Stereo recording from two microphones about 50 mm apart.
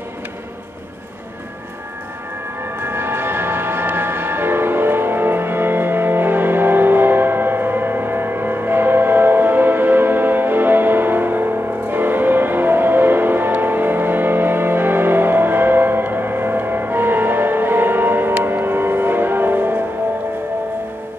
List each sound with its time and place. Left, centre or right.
2.8 s music: right